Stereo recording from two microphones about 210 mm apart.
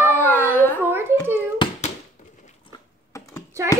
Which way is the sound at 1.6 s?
25° left (ahead or behind).